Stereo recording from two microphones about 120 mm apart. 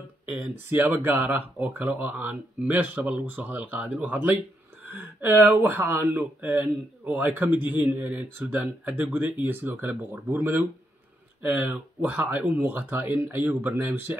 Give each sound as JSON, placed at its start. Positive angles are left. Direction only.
{"t": 0.4, "sound": "speech", "side_deg": -15}
{"t": 13.5, "sound": "speech", "side_deg": -15}